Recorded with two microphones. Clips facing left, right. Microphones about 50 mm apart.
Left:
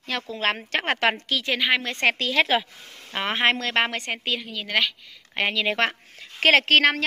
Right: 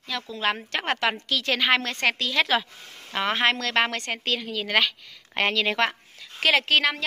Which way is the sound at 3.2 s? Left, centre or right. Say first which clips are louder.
Left 1 dB; left.